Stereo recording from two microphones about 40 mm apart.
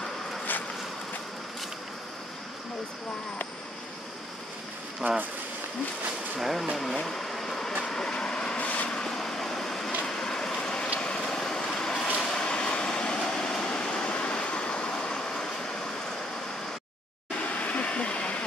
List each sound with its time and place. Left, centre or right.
5.0 s speech: right
6.3 s speech: centre
7.8 s vehicle: centre
8.5 s vehicle: left
8.9 s vehicle: centre
17.4 s a sound: left